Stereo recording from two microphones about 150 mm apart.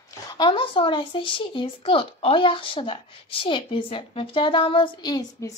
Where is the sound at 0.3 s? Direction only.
30° left (ahead or behind).